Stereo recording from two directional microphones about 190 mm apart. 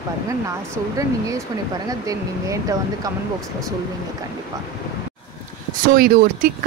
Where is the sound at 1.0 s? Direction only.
15° right (ahead or behind).